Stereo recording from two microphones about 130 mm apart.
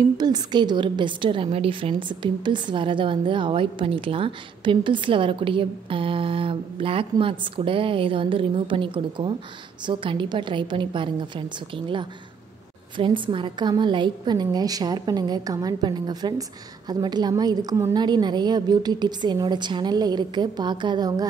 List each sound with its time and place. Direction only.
0.2 s a woman's voice: 35° right (ahead or behind)